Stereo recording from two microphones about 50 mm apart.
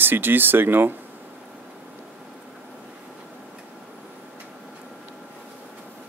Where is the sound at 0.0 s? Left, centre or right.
Right.